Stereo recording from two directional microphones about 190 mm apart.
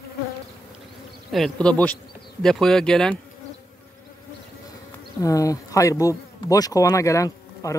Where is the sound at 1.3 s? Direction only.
5° left (ahead or behind).